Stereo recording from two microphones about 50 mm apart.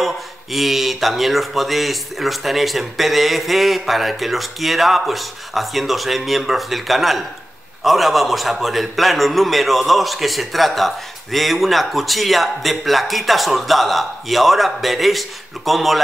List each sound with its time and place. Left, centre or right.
0.0 s speech: centre